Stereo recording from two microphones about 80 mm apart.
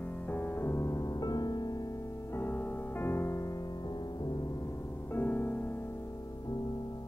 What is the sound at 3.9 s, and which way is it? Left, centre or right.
Music, left.